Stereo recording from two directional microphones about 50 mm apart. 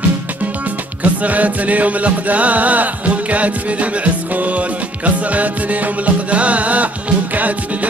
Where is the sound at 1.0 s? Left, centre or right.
Right.